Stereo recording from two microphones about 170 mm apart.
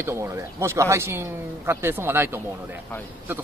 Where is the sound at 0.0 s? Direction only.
15° right (ahead or behind).